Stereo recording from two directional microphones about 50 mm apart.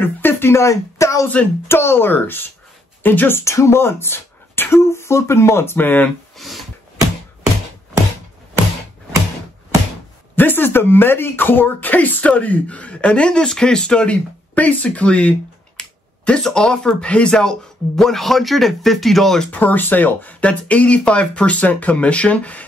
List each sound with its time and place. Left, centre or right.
0.0 s a sound: left
1.7 s speech: left
3.3 s speech: left
5.8 s speech: left
6.3 s a sound: centre
10.3 s speech: left; by 14.1 s centre
14.5 s speech: left
15.8 s speech: centre
19.5 s speech: left